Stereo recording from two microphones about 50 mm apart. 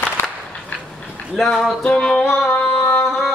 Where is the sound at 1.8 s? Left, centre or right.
Centre.